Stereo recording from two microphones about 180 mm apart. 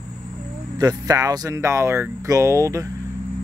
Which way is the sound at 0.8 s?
20° right (ahead or behind).